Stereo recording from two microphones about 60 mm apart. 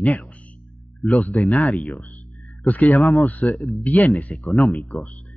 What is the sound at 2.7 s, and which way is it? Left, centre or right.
Speech, left.